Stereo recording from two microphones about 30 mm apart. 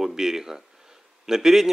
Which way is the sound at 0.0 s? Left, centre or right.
Centre.